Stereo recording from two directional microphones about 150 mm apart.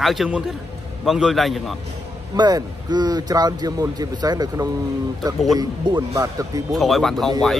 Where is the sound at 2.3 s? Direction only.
30° right (ahead or behind).